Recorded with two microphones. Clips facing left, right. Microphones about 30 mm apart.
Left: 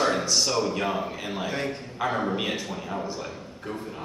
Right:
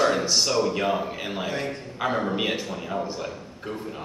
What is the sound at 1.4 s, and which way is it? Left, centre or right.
Speech, centre.